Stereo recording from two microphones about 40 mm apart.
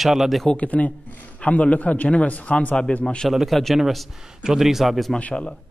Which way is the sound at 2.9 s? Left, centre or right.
Left.